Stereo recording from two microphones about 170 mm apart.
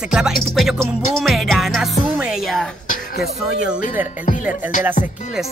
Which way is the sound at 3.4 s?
5° right (ahead or behind).